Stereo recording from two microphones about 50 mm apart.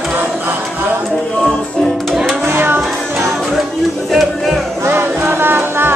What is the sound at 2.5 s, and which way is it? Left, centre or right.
Music, right.